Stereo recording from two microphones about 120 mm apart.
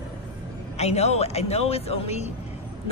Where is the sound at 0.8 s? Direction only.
65° left (ahead or behind).